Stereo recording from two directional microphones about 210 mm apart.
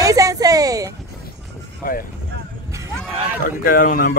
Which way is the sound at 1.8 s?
40° left (ahead or behind).